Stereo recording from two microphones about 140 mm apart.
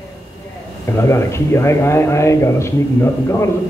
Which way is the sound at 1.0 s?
20° left (ahead or behind).